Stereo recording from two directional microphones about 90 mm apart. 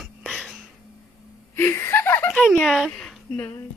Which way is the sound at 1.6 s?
30° left (ahead or behind).